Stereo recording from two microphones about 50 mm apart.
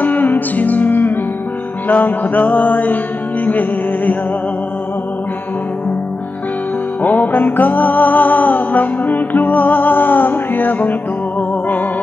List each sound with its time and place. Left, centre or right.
0.0 s music: left
7.0 s music: left